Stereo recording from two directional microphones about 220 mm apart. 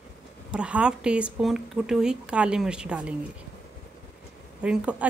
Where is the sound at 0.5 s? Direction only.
5° right (ahead or behind).